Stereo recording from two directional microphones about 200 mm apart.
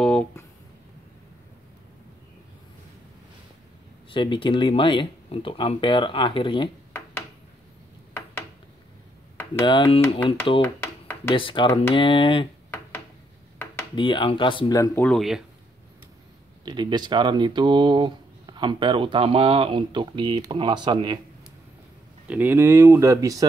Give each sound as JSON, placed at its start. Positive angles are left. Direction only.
{"t": 0.0, "sound": "a sound", "side_deg": 5}
{"t": 4.1, "sound": "speech", "side_deg": 25}
{"t": 10.1, "sound": "speech", "side_deg": 25}
{"t": 10.6, "sound": "a sound", "side_deg": 10}
{"t": 11.3, "sound": "speech", "side_deg": 25}
{"t": 13.9, "sound": "speech", "side_deg": 25}
{"t": 15.0, "sound": "speech", "side_deg": 0}
{"t": 16.6, "sound": "speech", "side_deg": -20}
{"t": 22.3, "sound": "speech", "side_deg": -10}